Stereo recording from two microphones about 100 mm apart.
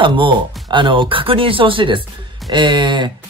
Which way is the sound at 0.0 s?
55° right (ahead or behind).